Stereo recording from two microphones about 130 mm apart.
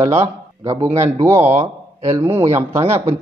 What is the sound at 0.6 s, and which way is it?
Speech, 25° right (ahead or behind).